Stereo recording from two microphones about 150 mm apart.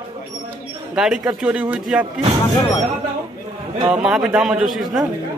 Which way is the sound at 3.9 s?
5° right (ahead or behind).